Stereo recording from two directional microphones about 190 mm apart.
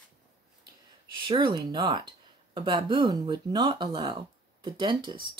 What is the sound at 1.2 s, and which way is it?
Speech, 25° right (ahead or behind).